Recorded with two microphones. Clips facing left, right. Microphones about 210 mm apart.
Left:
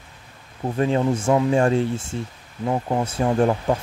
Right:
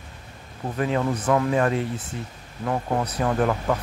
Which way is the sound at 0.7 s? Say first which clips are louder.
Left 3 dB; 30° left (ahead or behind).